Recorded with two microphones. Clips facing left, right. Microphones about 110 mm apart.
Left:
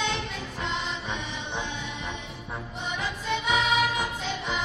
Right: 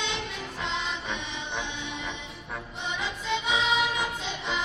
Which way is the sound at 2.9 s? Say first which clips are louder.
Left 1 dB; 20° right (ahead or behind).